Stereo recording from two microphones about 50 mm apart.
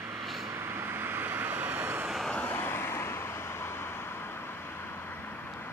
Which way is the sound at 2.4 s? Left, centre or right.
Left.